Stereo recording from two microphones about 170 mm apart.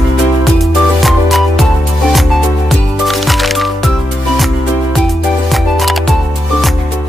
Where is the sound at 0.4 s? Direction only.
Centre (ahead or behind).